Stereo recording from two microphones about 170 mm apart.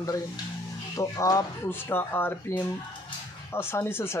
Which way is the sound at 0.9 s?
20° left (ahead or behind).